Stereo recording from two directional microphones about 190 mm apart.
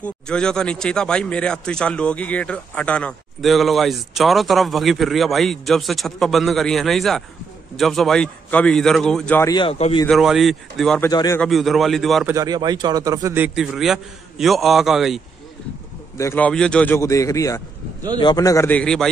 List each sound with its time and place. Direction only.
0.0 s speech: 5° left (ahead or behind)
9.5 s a man's voice: 25° left (ahead or behind)
10.0 s speech: centre (ahead or behind)
11.0 s a man's voice: 20° left (ahead or behind)
11.3 s speech: centre (ahead or behind)
12.3 s a man's voice: 20° right (ahead or behind); by 15.2 s centre (ahead or behind)
16.2 s speech: 10° left (ahead or behind)